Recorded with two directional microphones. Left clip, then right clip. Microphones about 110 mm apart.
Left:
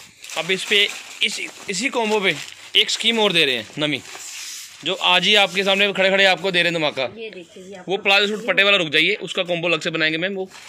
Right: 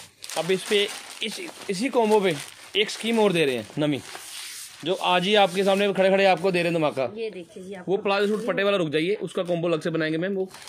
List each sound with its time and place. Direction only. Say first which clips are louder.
0.4 s speech: left 5 dB; 45° right (ahead or behind)
2.7 s a man's voice: left 7 dB; 75° right (ahead or behind); by 4.0 s 55° right (ahead or behind)
5.0 s a man's voice: left 5 dB; 55° right (ahead or behind)
7.9 s speech: left 6 dB; 90° right
8.5 s a man's voice: left 7 dB; 75° right (ahead or behind)